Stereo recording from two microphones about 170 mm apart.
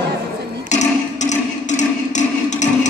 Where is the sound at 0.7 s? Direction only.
45° left (ahead or behind).